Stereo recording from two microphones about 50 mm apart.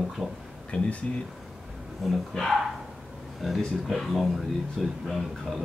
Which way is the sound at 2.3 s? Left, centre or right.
Centre.